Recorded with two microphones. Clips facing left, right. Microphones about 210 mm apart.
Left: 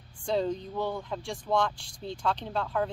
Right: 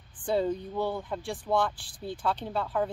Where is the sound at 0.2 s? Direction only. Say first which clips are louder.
Right 1 dB; 5° right (ahead or behind).